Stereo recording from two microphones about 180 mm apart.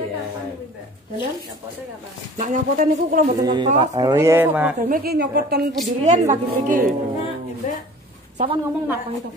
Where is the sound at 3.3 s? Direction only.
25° right (ahead or behind).